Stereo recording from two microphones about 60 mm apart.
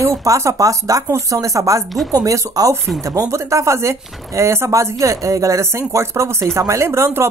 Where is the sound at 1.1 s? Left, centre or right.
Right.